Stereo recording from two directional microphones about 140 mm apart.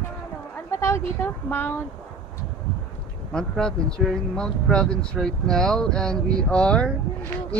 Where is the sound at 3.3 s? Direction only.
5° left (ahead or behind).